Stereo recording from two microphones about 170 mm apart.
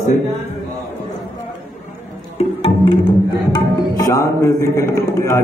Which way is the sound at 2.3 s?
35° left (ahead or behind).